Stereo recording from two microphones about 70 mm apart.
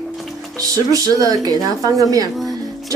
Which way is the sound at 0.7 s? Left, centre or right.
Right.